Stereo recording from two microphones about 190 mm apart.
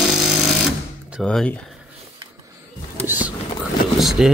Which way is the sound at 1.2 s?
5° left (ahead or behind).